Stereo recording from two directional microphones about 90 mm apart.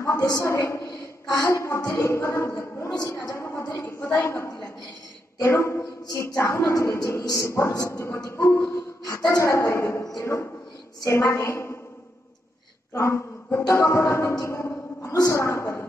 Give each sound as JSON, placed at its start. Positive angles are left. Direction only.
{"t": 0.0, "sound": "a sound", "side_deg": 35}
{"t": 0.3, "sound": "a woman's voice", "side_deg": 30}
{"t": 12.9, "sound": "a woman's voice", "side_deg": 30}